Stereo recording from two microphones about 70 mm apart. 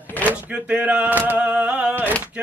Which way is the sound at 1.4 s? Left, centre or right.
Centre.